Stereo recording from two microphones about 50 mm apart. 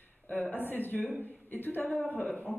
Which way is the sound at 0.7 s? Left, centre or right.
Left.